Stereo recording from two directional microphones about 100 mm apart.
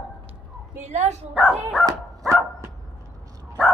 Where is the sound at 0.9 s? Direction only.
90° right.